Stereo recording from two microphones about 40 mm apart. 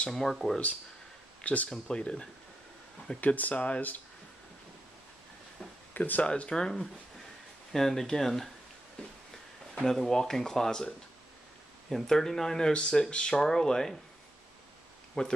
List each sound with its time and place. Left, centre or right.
0.1 s speech: centre
1.4 s speech: left
1.7 s speech: left
3.2 s speech: left
5.9 s speech: left
6.2 s speech: left
6.5 s speech: centre
9.8 s speech: centre
12.7 s speech: left
13.3 s speech: centre
15.2 s speech: left